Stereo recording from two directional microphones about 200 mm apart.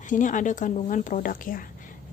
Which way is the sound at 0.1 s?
40° left (ahead or behind).